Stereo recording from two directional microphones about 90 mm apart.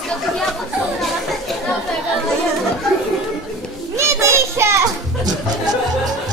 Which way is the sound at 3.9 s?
30° right (ahead or behind).